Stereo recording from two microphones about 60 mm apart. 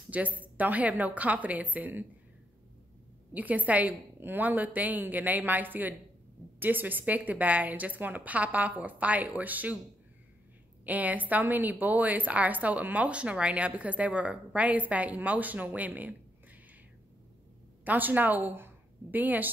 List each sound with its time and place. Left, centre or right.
0.1 s a woman's voice: right
3.3 s a woman's voice: right
10.9 s a woman's voice: right
17.8 s a woman's voice: right